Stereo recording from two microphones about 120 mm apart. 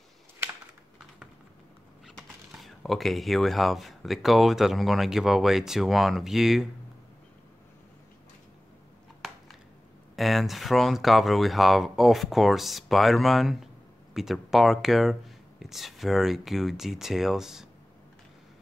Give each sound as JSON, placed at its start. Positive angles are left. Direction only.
{"t": 2.0, "sound": "speech", "side_deg": 0}
{"t": 10.1, "sound": "speech", "side_deg": 0}